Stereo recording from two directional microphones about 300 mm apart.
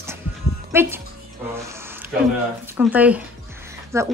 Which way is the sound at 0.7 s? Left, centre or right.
Centre.